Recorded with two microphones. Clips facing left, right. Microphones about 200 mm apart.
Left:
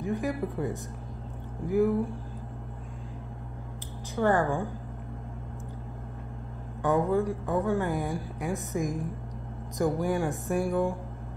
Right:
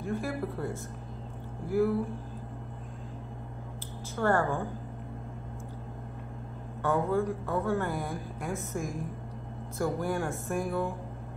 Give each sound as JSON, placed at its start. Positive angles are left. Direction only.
{"t": 0.0, "sound": "a woman's voice", "side_deg": 15}
{"t": 4.1, "sound": "a woman's voice", "side_deg": 15}
{"t": 6.8, "sound": "a woman's voice", "side_deg": 15}